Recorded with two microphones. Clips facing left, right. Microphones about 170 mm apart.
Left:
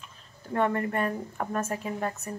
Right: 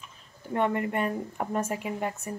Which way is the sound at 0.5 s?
15° right (ahead or behind).